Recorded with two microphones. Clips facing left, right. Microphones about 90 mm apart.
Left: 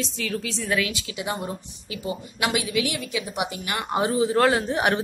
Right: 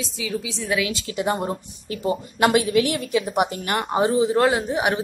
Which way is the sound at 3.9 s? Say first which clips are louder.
Right 2 dB; 25° right (ahead or behind).